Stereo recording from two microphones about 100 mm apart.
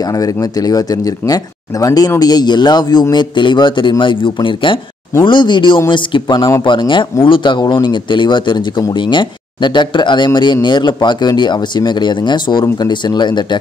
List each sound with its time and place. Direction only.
0.0 s a man's voice: 35° left (ahead or behind)